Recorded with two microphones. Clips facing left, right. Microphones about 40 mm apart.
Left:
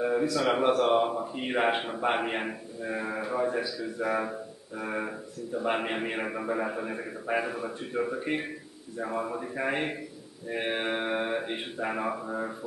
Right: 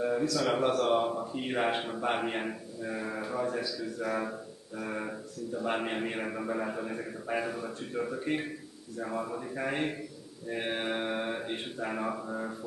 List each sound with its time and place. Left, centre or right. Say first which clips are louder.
0.0 s a man's voice: left 3 dB; centre